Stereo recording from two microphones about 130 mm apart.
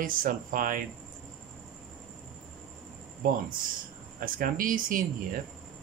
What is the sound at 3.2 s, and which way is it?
Speech, 90° right.